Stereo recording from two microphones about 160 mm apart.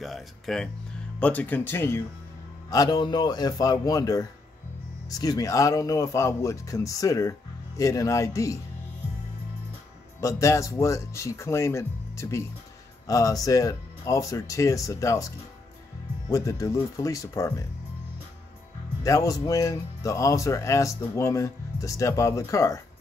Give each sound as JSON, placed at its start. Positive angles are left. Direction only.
{"t": 0.0, "sound": "speech", "side_deg": 0}
{"t": 10.2, "sound": "speech", "side_deg": 20}
{"t": 16.3, "sound": "speech", "side_deg": 20}
{"t": 19.0, "sound": "speech", "side_deg": 20}